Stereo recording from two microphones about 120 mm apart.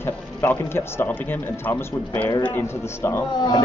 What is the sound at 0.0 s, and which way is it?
Speech, 20° left (ahead or behind).